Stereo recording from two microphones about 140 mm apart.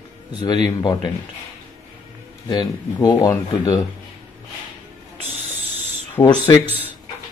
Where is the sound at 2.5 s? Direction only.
30° left (ahead or behind).